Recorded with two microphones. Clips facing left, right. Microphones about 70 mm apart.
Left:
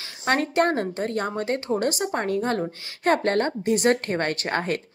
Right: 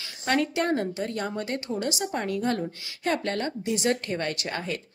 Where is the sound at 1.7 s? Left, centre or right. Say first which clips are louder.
Left 4 dB; left.